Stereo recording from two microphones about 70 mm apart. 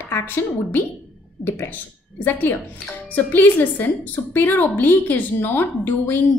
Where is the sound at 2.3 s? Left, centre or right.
Left.